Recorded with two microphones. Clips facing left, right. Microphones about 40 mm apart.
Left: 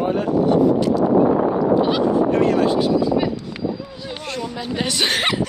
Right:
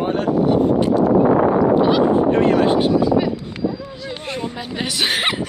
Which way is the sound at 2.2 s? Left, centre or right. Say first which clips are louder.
Right 2 dB; right.